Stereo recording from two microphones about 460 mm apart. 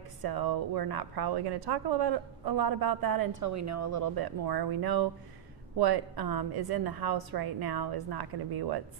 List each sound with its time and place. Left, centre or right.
0.2 s speech: right